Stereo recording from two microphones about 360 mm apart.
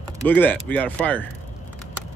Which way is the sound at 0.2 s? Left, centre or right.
Centre.